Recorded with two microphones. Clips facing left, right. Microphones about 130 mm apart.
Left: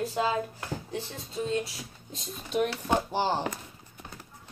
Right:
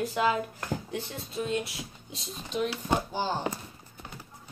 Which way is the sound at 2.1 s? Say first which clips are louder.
Left 4 dB; 55° left (ahead or behind).